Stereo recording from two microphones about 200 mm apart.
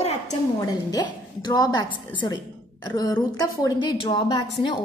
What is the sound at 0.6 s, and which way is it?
A woman's voice, 20° left (ahead or behind).